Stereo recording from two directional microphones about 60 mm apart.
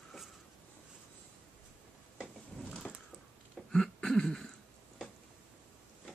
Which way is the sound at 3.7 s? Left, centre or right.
Centre.